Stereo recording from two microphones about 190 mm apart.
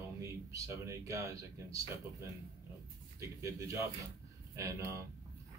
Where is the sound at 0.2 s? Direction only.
15° right (ahead or behind).